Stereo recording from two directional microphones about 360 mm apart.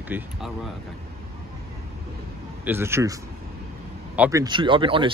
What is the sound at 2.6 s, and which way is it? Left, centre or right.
Speech, centre.